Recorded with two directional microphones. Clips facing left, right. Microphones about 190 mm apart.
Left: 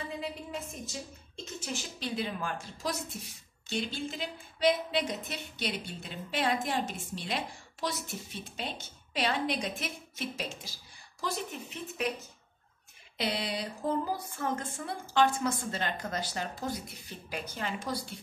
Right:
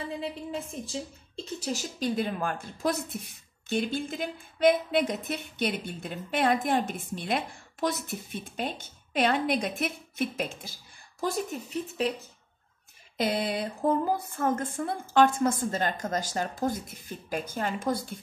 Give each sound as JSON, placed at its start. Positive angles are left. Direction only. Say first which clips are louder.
{"t": 0.2, "sound": "speech", "louder": "right 4 dB", "side_deg": -30}
{"t": 13.2, "sound": "speech", "louder": "right 5 dB", "side_deg": -50}